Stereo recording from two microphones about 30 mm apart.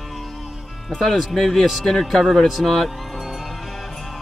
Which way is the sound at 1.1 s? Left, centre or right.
Centre.